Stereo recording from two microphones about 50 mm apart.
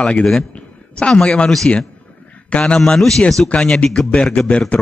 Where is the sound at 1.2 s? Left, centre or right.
Left.